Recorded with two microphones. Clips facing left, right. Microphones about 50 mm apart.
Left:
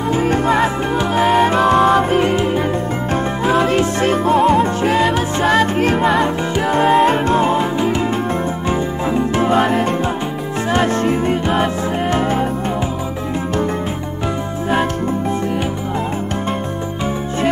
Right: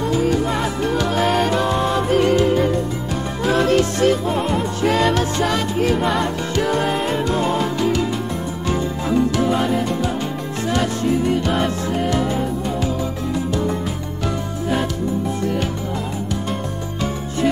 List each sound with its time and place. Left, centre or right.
0.1 s music: left
0.9 s music: centre
1.6 s music: left
2.0 s music: left
4.3 s music: left
4.8 s music: centre
5.5 s music: left
6.2 s music: left
7.0 s music: left
9.5 s music: left
10.7 s music: left
11.4 s music: centre
12.1 s music: left